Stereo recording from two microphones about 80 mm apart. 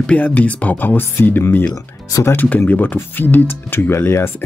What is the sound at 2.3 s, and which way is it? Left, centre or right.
Speech, left.